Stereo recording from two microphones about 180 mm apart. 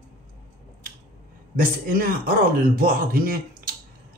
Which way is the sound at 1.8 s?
55° right (ahead or behind).